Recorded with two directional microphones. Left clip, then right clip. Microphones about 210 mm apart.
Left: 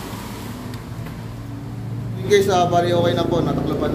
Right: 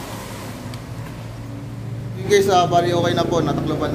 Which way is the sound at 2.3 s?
15° right (ahead or behind).